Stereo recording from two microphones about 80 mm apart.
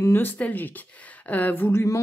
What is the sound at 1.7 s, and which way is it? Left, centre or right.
Speech, left.